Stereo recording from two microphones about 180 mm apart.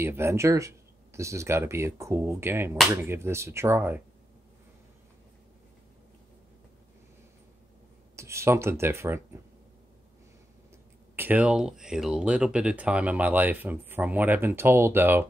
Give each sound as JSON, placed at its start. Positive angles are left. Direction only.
{"t": 0.0, "sound": "speech", "side_deg": -15}
{"t": 8.2, "sound": "speech", "side_deg": -15}
{"t": 11.1, "sound": "speech", "side_deg": -10}